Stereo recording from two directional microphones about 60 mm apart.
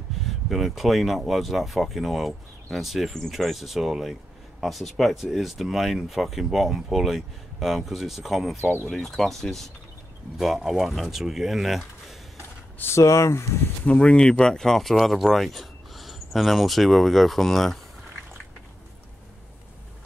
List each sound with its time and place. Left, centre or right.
0.5 s speech: centre
12.9 s speech: left
13.8 s speech: centre